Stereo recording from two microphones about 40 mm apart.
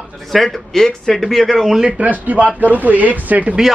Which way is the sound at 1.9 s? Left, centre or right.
Right.